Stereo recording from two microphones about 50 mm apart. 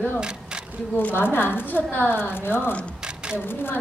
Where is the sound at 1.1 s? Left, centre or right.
Left.